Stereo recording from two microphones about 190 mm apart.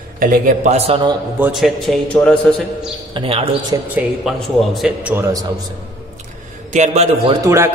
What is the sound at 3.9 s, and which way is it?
A man's voice, 5° right (ahead or behind).